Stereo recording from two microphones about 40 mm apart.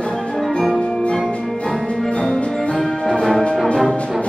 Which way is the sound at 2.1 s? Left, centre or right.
Left.